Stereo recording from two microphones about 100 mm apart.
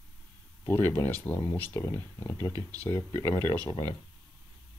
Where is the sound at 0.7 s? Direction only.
25° left (ahead or behind).